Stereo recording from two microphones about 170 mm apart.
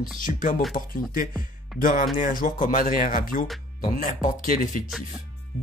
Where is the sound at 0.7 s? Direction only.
55° left (ahead or behind).